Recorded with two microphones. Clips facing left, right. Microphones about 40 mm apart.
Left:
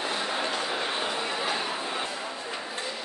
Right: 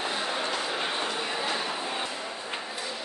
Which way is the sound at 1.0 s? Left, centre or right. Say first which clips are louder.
Left 1 dB; centre.